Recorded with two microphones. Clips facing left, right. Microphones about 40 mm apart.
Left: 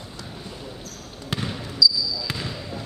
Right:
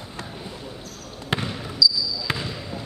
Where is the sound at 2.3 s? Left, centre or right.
Right.